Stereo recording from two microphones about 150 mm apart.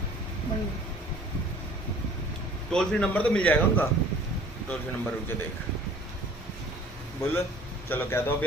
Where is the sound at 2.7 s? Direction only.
5° left (ahead or behind).